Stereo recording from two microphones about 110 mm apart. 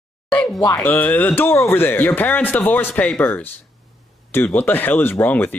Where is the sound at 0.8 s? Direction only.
15° left (ahead or behind).